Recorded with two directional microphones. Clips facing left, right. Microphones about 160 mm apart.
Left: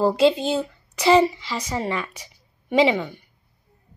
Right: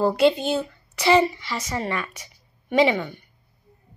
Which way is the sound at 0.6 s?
10° left (ahead or behind).